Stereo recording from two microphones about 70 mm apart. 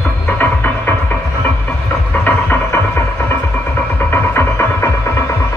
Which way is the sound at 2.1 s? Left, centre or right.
Left.